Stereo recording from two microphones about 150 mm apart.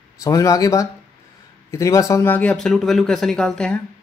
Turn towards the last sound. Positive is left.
turn(degrees=5)  # may be behind; listen again after turning